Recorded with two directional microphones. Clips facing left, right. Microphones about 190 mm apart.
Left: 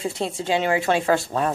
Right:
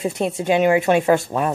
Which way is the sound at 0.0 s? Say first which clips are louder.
Right 4 dB; 20° right (ahead or behind).